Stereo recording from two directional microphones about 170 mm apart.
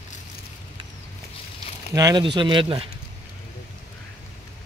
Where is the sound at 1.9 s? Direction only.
25° right (ahead or behind).